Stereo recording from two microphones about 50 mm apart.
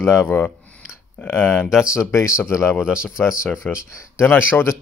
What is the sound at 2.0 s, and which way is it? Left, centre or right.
Speech, left.